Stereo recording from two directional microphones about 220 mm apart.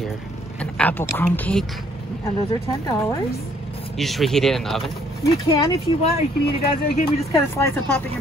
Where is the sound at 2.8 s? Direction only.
15° left (ahead or behind).